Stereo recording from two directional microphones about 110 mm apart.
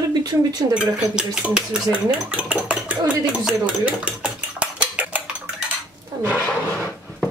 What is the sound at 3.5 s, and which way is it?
Dishes, 10° right (ahead or behind).